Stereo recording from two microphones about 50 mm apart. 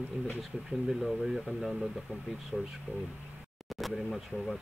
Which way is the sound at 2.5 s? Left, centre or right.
Centre.